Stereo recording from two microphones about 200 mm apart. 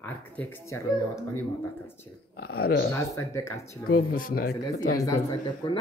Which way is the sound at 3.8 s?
45° left (ahead or behind).